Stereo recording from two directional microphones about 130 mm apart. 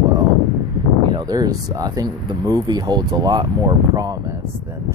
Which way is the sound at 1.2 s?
25° right (ahead or behind).